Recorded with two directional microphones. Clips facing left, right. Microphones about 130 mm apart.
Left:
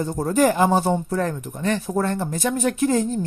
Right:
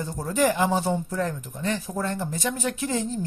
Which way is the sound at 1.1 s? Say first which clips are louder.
Left 4 dB; 60° left (ahead or behind).